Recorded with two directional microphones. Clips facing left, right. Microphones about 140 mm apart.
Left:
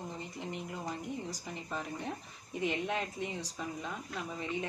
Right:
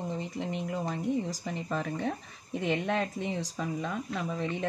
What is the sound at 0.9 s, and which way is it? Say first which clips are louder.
Speech: right 8 dB; 90° right.